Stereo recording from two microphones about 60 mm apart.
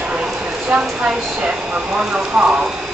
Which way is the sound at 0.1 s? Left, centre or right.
Centre.